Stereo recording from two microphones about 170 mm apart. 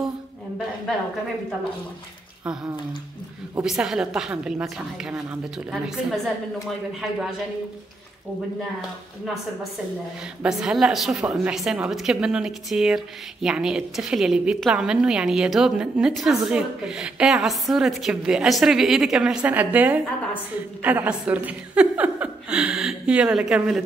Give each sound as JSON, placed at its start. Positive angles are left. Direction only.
{"t": 2.4, "sound": "a woman's voice", "side_deg": -5}
{"t": 9.2, "sound": "a woman's voice", "side_deg": 0}